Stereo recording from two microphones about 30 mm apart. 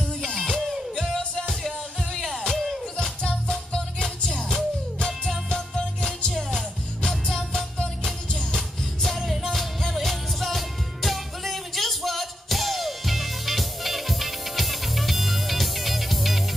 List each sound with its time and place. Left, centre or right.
0.2 s music: centre
2.1 s music: centre
3.4 s music: left
6.5 s music: centre
7.2 s music: centre
8.3 s music: left
8.5 s music: centre